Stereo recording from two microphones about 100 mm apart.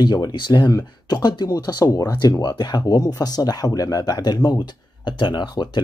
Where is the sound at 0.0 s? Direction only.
45° left (ahead or behind).